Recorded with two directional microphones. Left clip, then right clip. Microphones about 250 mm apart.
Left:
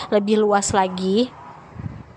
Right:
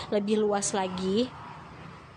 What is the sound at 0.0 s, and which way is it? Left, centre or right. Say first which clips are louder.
A woman's voice: left 8 dB; centre.